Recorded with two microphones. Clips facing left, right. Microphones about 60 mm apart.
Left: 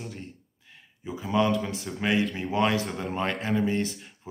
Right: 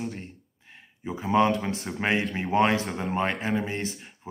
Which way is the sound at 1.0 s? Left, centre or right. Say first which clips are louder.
Right 3 dB; right.